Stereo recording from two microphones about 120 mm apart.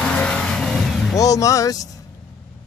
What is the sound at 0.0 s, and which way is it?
Vehicle, 10° left (ahead or behind).